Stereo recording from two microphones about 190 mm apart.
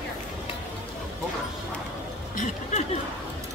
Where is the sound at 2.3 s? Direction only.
40° left (ahead or behind).